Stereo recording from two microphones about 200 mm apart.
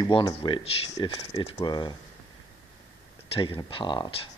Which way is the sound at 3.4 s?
25° left (ahead or behind).